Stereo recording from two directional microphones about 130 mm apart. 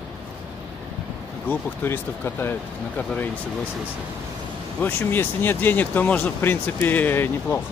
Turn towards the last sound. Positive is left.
turn(degrees=15)  # may be behind; listen again after turning